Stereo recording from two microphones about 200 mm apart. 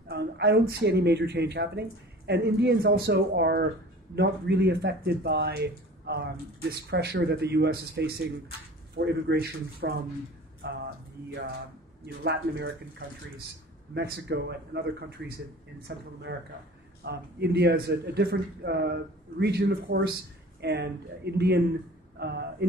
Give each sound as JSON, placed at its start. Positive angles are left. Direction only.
{"t": 0.1, "sound": "speech", "side_deg": -55}
{"t": 12.2, "sound": "speech", "side_deg": -60}
{"t": 13.9, "sound": "speech", "side_deg": -55}